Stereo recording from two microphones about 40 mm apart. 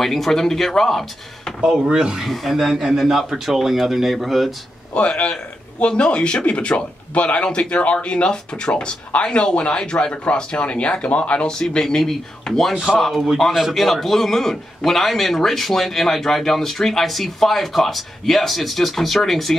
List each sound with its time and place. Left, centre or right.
0.0 s speech: centre
2.1 s a man's voice: centre
4.9 s speech: left
11.4 s a man's voice: centre